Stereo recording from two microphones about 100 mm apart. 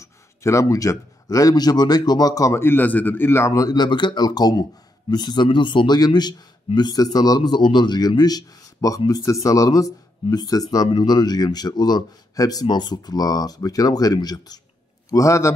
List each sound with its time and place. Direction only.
0.0 s a man's voice: 30° left (ahead or behind)